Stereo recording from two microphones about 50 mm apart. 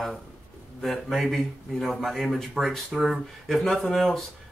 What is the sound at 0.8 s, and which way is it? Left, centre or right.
Speech, centre.